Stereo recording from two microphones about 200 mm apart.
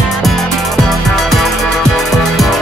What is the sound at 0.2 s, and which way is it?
Music, centre (ahead or behind).